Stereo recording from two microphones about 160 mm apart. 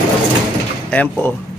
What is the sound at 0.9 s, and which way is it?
Speech, 10° left (ahead or behind).